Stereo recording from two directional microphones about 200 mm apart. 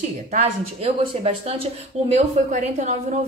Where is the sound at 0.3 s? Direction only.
35° right (ahead or behind).